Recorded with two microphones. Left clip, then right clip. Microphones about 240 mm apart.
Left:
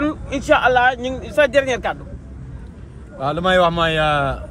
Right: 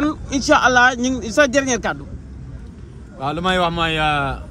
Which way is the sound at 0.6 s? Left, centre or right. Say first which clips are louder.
Right 3 dB; right.